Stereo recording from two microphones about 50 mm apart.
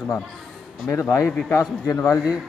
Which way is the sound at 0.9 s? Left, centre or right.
Left.